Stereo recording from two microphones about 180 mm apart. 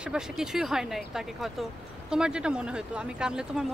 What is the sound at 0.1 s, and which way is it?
Speech, 5° right (ahead or behind).